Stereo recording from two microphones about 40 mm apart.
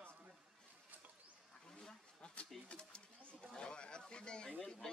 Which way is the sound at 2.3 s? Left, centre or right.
Left.